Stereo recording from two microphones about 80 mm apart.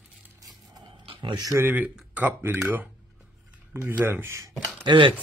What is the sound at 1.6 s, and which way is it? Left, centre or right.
A man's voice, centre.